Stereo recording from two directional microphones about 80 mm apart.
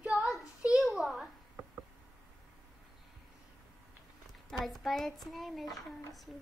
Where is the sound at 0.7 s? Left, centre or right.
Centre.